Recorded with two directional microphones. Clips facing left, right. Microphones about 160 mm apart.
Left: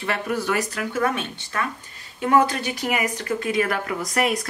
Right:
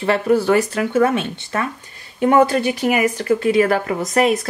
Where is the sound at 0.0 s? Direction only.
30° right (ahead or behind).